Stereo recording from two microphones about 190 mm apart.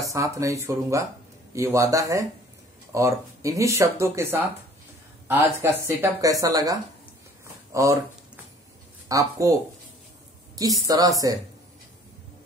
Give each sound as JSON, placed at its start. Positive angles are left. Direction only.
{"t": 0.1, "sound": "speech", "side_deg": -15}
{"t": 9.1, "sound": "speech", "side_deg": -15}